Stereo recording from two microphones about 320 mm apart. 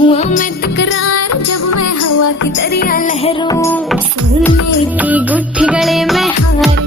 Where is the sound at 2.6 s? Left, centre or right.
Left.